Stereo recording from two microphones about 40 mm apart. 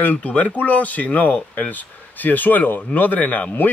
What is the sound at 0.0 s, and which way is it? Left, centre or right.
Speech, left.